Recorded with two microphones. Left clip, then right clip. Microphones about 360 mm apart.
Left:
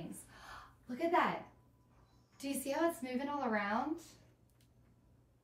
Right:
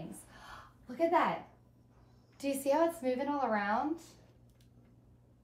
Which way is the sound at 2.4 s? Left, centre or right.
Centre.